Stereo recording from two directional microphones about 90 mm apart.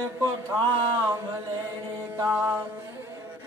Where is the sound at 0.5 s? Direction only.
55° right (ahead or behind).